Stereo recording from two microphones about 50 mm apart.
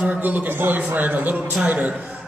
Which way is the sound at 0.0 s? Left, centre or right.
Right.